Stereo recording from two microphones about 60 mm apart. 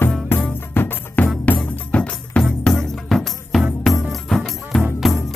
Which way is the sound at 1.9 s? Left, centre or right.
Centre.